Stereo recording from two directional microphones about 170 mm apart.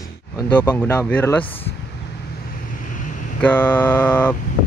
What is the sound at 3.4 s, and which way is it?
Speech, 10° left (ahead or behind).